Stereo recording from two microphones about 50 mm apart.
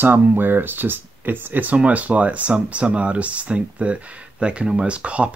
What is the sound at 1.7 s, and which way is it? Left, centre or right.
Speech, right.